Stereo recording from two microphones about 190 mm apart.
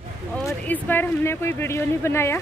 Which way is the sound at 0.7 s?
10° left (ahead or behind).